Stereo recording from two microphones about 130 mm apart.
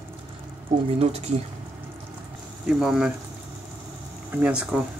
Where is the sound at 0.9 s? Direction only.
55° right (ahead or behind).